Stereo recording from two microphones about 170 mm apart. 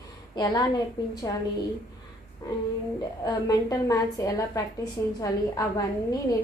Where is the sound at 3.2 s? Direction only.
20° left (ahead or behind).